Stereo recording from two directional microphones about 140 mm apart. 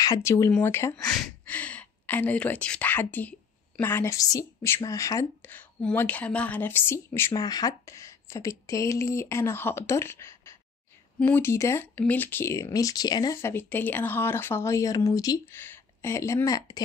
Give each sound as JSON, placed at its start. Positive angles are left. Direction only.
{"t": 0.0, "sound": "speech", "side_deg": 25}
{"t": 5.5, "sound": "speech", "side_deg": 10}
{"t": 7.3, "sound": "speech", "side_deg": 25}
{"t": 13.4, "sound": "speech", "side_deg": 15}